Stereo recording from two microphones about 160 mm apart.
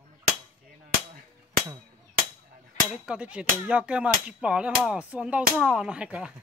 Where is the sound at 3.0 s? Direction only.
5° right (ahead or behind).